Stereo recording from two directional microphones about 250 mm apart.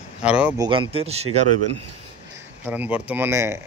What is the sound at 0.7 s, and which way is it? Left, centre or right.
Speech, right.